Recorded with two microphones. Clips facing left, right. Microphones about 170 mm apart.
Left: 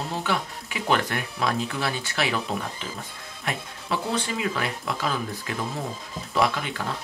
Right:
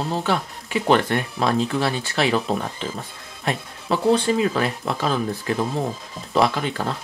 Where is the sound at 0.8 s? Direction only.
30° right (ahead or behind).